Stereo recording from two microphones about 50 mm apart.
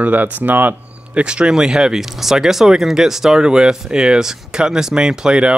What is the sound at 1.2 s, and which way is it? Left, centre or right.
Speech, right.